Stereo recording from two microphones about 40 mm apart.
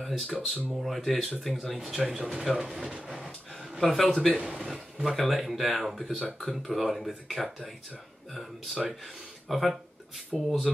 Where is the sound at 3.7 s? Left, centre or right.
Centre.